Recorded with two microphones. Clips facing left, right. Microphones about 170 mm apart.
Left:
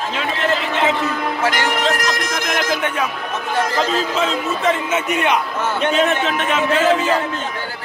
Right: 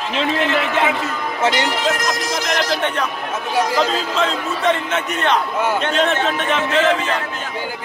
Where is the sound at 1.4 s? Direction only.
20° right (ahead or behind).